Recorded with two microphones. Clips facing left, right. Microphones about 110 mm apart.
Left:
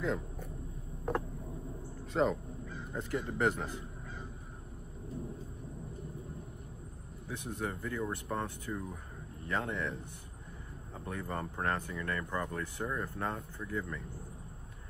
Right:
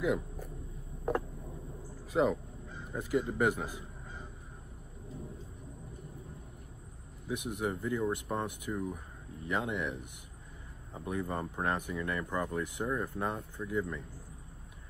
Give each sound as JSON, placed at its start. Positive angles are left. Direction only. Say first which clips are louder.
{"t": 0.0, "sound": "speech", "louder": "right 3 dB", "side_deg": -10}
{"t": 2.1, "sound": "speech", "louder": "right 2 dB", "side_deg": -5}
{"t": 7.2, "sound": "speech", "louder": "right 4 dB", "side_deg": -15}
{"t": 11.1, "sound": "speech", "louder": "right 3 dB", "side_deg": -15}